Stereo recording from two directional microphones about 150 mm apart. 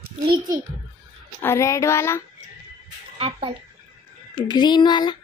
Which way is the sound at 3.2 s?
40° right (ahead or behind).